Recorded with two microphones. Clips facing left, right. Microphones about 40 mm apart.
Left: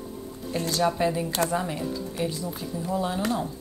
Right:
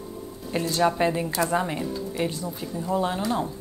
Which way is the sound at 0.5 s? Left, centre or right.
Right.